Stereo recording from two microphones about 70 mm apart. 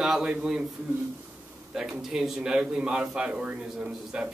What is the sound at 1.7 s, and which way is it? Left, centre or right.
A man's voice, centre.